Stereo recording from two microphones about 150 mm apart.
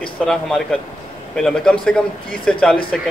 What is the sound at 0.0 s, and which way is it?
A man's voice, 5° left (ahead or behind).